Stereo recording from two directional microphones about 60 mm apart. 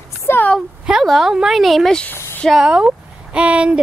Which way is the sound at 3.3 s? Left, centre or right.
Centre.